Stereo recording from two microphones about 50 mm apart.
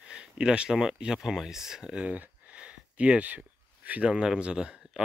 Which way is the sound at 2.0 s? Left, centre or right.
Right.